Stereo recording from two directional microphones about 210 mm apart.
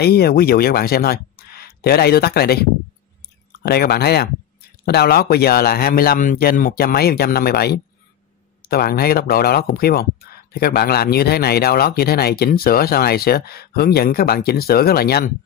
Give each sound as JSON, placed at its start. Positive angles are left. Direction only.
{"t": 0.0, "sound": "a man's voice", "side_deg": 50}